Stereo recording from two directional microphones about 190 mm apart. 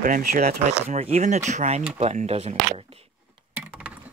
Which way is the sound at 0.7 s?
35° right (ahead or behind).